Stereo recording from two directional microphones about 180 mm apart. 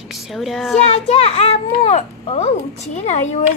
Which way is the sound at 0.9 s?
35° left (ahead or behind).